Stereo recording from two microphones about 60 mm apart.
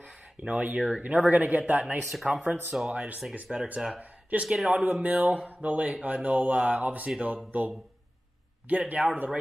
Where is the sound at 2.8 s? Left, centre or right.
Right.